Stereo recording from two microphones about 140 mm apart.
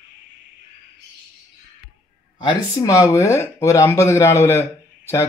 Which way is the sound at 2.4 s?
25° left (ahead or behind).